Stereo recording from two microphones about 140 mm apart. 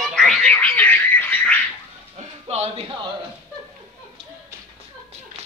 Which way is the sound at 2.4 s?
50° right (ahead or behind).